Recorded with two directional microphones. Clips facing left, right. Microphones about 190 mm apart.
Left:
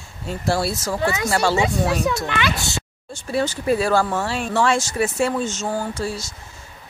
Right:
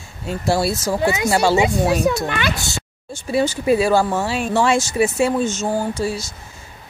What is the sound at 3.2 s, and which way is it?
Speech, 10° right (ahead or behind).